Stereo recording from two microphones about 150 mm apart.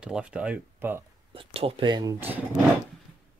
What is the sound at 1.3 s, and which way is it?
Speech, 35° right (ahead or behind).